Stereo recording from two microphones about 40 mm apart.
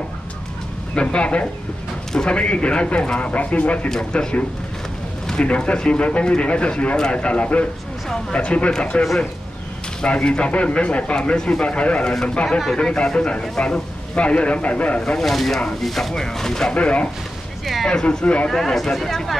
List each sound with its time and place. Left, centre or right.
0.9 s a man's voice: left
10.0 s a man's voice: left
12.4 s speech: centre
12.7 s a man's voice: left
15.1 s speech: centre
16.7 s a man's voice: left
18.5 s speech: centre